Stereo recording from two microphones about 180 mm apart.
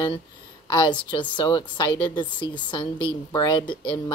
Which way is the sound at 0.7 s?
25° left (ahead or behind).